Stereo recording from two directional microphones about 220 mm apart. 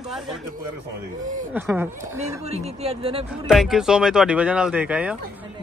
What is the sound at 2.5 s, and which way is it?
Speech, 30° right (ahead or behind).